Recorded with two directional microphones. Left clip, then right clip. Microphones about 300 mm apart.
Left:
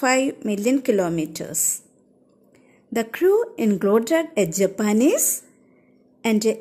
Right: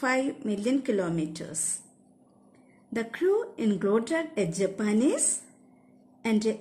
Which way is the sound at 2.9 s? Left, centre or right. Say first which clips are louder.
Left 8 dB; centre.